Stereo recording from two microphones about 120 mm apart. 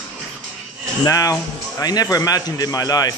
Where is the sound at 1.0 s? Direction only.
30° left (ahead or behind).